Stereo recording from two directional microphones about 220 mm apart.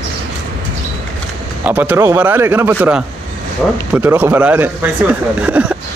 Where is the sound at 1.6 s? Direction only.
5° right (ahead or behind).